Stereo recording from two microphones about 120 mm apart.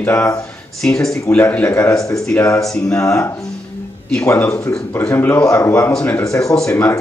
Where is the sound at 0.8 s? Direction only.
5° left (ahead or behind).